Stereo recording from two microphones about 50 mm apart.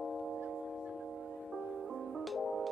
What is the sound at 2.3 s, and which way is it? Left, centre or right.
Music, centre.